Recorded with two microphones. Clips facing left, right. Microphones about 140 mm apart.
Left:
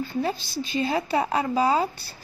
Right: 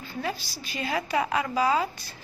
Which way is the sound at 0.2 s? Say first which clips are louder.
Left 3 dB; 25° left (ahead or behind).